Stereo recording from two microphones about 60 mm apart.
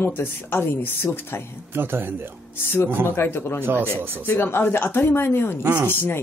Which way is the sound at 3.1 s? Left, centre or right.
Left.